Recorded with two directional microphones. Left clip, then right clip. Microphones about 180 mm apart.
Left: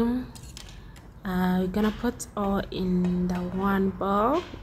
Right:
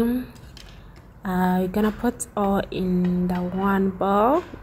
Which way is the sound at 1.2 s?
5° right (ahead or behind).